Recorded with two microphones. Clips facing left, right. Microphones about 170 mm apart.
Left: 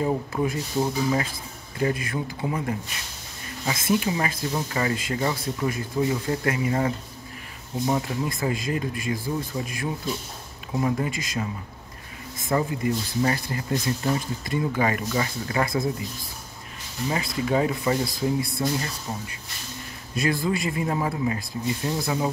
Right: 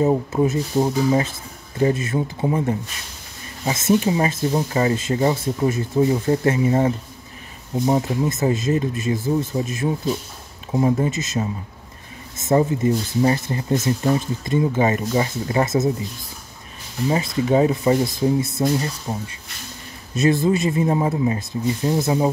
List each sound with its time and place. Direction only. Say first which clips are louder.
0.0 s speech: right 6 dB; 25° right (ahead or behind)
17.1 s speech: right 6 dB; 25° right (ahead or behind)